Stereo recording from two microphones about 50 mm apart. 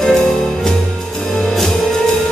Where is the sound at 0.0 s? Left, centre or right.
Centre.